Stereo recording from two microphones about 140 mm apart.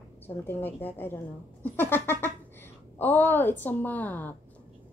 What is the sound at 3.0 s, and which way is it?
A woman's voice, 15° left (ahead or behind).